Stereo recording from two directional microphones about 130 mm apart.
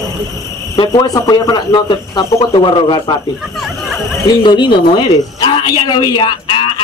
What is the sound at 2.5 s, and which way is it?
Speech, 40° left (ahead or behind).